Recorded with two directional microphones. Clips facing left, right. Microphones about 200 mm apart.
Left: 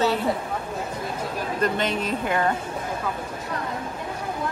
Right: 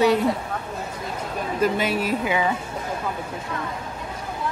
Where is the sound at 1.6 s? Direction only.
5° right (ahead or behind).